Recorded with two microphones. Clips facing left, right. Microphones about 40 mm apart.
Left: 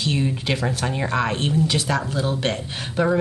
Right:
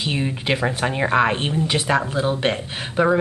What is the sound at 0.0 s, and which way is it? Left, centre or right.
Speech, centre.